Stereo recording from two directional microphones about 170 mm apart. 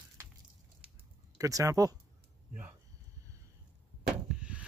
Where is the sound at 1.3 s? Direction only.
20° right (ahead or behind).